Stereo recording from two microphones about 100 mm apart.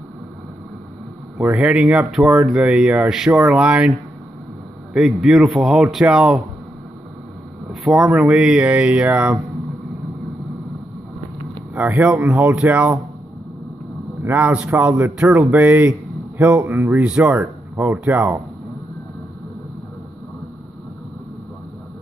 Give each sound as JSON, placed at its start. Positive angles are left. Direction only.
{"t": 1.5, "sound": "a man's voice", "side_deg": -5}
{"t": 4.9, "sound": "a man's voice", "side_deg": -5}
{"t": 7.8, "sound": "a man's voice", "side_deg": -5}
{"t": 11.7, "sound": "a man's voice", "side_deg": -15}
{"t": 14.2, "sound": "a man's voice", "side_deg": -15}
{"t": 17.0, "sound": "a man's voice", "side_deg": -15}